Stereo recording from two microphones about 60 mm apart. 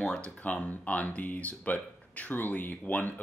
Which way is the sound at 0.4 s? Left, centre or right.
Left.